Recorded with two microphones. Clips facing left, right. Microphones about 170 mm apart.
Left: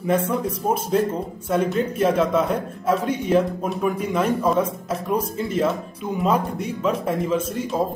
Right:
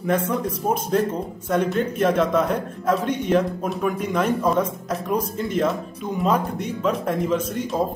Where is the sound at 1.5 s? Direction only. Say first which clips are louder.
Even; centre (ahead or behind).